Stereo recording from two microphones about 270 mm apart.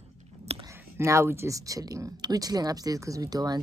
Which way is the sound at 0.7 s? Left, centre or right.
Centre.